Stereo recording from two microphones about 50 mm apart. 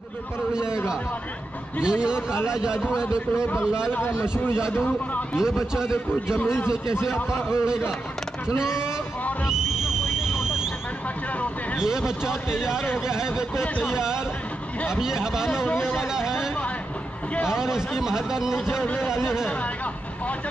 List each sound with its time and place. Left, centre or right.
0.5 s a man's voice: centre
1.8 s a man's voice: centre
5.4 s a man's voice: centre
7.4 s a man's voice: centre
9.5 s a sound: centre
13.0 s a man's voice: centre
15.0 s a man's voice: centre
15.6 s speech: left
16.0 s a man's voice: centre
17.6 s a man's voice: centre